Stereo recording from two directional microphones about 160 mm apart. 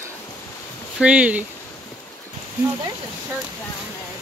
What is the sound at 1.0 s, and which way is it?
Speech, 10° right (ahead or behind).